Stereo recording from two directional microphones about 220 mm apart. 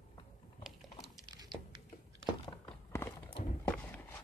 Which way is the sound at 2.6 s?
10° left (ahead or behind).